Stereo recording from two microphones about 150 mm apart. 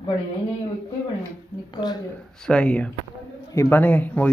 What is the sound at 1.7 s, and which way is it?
Speech, 30° left (ahead or behind).